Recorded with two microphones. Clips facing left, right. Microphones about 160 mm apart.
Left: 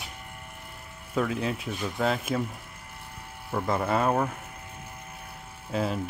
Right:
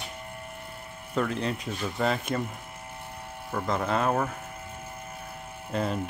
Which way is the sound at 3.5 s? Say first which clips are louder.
Left 1 dB; 5° left (ahead or behind).